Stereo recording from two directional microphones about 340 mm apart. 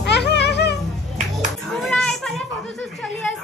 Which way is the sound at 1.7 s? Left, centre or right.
Centre.